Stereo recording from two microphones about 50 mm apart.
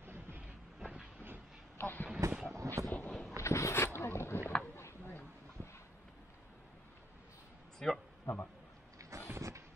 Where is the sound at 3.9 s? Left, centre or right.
Left.